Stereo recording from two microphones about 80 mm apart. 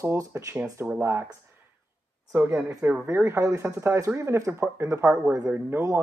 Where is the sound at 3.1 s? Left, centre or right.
Right.